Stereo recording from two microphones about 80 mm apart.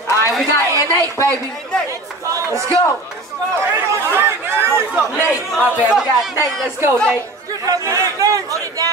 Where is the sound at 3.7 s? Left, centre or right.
Right.